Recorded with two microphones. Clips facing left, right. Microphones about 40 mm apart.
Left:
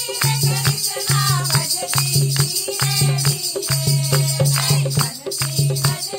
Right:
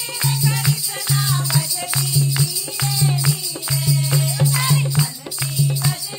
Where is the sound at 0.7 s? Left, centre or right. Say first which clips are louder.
Even; left.